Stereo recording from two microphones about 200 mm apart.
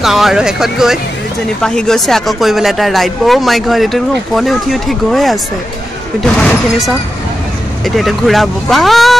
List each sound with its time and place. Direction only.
0.0 s speech: centre (ahead or behind)